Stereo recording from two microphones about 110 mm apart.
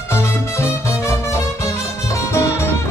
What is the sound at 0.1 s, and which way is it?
Music, 25° left (ahead or behind).